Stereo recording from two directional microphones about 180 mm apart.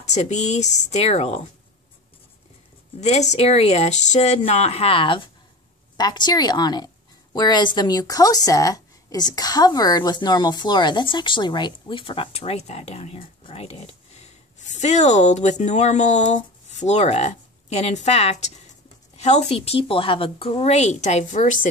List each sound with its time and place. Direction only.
0.0 s a woman's voice: 40° left (ahead or behind)
3.0 s a woman's voice: 40° left (ahead or behind)